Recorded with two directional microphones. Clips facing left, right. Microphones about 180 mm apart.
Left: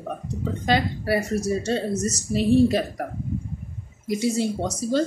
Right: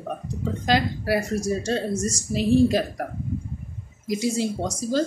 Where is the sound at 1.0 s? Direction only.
Centre (ahead or behind).